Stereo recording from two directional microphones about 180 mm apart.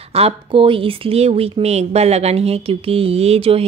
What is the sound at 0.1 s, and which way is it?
Speech, 30° right (ahead or behind).